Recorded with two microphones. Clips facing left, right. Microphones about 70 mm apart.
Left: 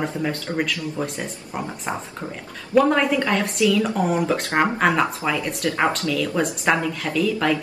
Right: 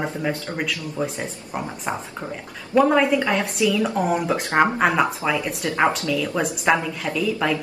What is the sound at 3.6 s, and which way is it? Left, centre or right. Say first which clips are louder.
Speech: left 2 dB; centre.